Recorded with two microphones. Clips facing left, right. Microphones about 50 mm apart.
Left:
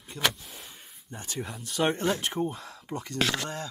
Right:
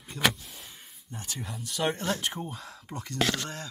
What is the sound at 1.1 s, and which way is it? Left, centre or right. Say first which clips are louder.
Speech: even; left.